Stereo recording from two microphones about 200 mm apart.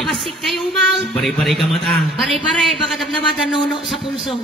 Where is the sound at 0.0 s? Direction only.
Centre (ahead or behind).